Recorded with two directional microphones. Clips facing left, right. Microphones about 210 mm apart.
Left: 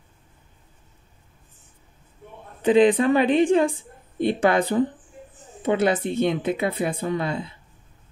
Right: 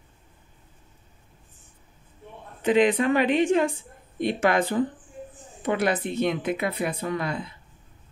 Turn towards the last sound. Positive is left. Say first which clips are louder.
# left 3 dB
turn(degrees=25)  # may be behind; listen again after turning